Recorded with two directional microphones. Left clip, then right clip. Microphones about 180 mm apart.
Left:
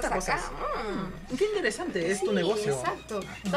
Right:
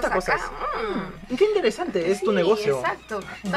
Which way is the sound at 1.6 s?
Centre (ahead or behind).